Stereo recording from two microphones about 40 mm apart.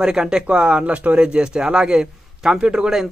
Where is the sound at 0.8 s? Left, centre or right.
Right; by 2.9 s centre.